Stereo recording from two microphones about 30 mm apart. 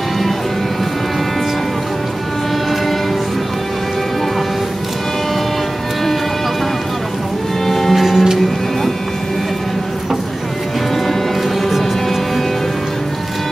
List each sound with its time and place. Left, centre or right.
7.6 s music: centre
7.9 s music: centre